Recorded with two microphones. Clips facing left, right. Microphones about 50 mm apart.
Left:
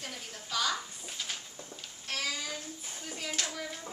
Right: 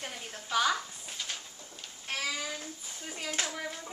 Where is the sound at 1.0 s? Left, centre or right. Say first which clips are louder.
Even; centre.